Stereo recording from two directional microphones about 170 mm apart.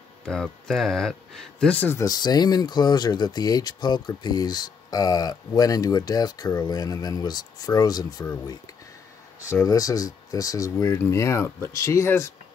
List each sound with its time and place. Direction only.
0.2 s speech: 5° left (ahead or behind); by 8.3 s 20° left (ahead or behind)
9.5 s speech: 20° left (ahead or behind)